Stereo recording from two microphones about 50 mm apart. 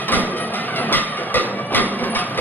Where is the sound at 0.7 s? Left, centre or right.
Left.